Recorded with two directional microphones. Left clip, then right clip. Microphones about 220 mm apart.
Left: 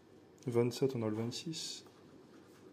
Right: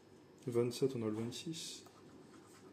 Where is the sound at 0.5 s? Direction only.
25° left (ahead or behind).